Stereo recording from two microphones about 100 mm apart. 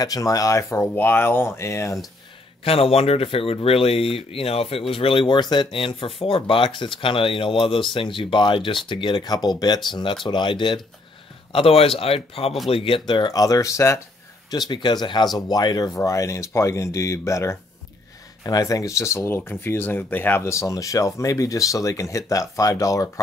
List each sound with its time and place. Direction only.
0.0 s speech: 35° left (ahead or behind)
2.6 s speech: 80° left; by 10.8 s 50° left (ahead or behind)
11.5 s speech: 70° left (ahead or behind)
12.6 s speech: 65° left (ahead or behind)
13.3 s speech: 35° left (ahead or behind)
14.7 s speech: 45° left (ahead or behind)